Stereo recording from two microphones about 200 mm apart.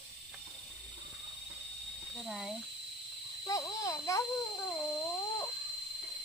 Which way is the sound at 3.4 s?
15° left (ahead or behind).